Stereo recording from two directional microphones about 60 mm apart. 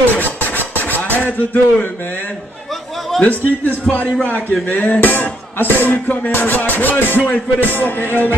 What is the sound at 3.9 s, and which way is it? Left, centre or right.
Speech, left.